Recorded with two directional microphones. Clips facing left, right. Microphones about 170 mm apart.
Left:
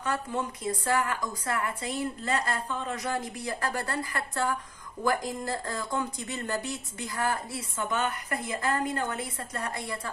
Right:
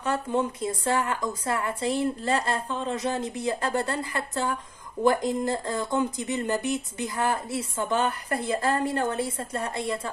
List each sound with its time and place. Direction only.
0.0 s speech: 25° right (ahead or behind)